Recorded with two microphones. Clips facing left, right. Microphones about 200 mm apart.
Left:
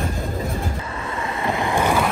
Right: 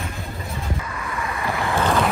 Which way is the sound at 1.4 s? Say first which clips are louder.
Left 2 dB; 15° left (ahead or behind).